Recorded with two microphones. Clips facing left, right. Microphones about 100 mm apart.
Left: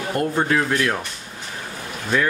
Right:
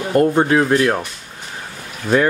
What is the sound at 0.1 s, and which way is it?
Rub, 25° right (ahead or behind).